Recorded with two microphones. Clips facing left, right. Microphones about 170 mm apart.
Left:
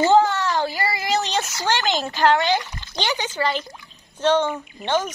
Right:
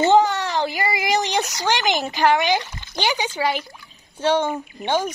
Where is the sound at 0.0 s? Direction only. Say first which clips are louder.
Even; 20° right (ahead or behind).